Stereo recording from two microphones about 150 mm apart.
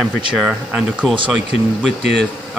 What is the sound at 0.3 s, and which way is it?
Speech, 5° right (ahead or behind).